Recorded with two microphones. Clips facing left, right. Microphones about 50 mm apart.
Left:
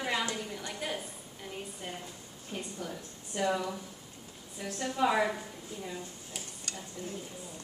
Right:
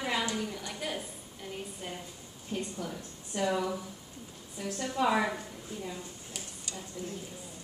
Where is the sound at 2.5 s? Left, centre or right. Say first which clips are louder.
Right 3 dB; centre.